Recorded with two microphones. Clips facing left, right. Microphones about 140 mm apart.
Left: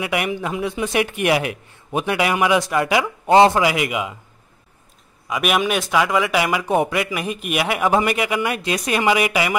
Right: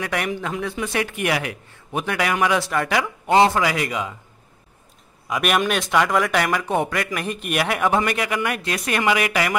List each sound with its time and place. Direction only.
0.0 s speech: 10° left (ahead or behind)
3.0 s speech: 25° left (ahead or behind)
3.6 s speech: 10° left (ahead or behind)
5.3 s a man's voice: centre (ahead or behind)